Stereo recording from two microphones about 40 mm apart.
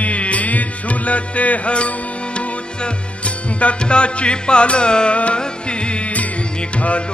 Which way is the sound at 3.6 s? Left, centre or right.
Left.